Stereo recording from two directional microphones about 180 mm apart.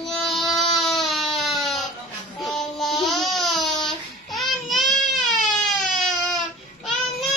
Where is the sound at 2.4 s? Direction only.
Centre (ahead or behind).